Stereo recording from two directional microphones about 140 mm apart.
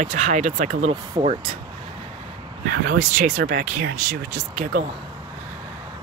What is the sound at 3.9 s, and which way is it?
Speech, 75° right (ahead or behind).